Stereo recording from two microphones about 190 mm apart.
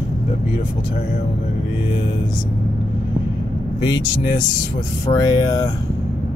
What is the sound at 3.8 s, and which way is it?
Speech, 25° left (ahead or behind).